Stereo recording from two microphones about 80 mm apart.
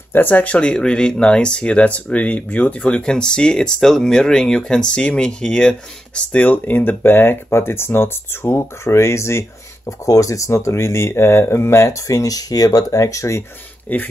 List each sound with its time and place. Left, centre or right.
0.1 s speech: left
13.9 s speech: left